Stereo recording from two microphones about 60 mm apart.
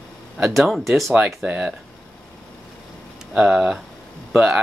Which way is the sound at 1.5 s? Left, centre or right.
Centre.